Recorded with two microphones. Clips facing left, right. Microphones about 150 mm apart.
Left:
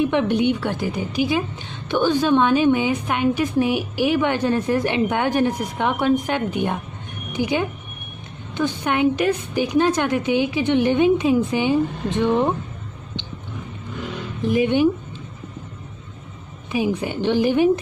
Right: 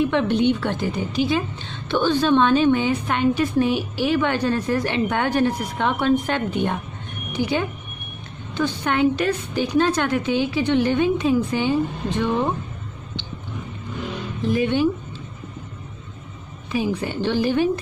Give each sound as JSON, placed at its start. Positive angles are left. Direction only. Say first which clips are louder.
{"t": 0.0, "sound": "a woman's voice", "louder": "even", "side_deg": 15}
{"t": 14.4, "sound": "a woman's voice", "louder": "left 2 dB", "side_deg": 15}
{"t": 16.7, "sound": "a woman's voice", "louder": "left 1 dB", "side_deg": 15}